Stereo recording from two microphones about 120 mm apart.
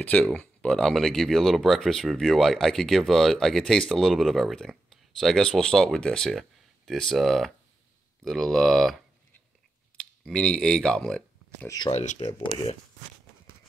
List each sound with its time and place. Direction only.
0.0 s speech: 10° left (ahead or behind)
11.6 s speech: 30° left (ahead or behind)
11.9 s speech: 75° left (ahead or behind)